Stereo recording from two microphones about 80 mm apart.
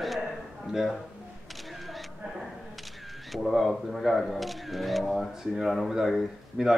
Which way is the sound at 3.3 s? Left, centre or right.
Centre.